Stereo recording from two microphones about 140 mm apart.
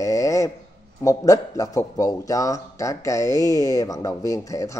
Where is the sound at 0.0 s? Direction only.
20° left (ahead or behind).